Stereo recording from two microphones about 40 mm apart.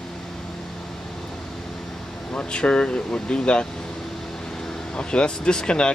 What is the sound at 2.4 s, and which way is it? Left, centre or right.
Speech, left.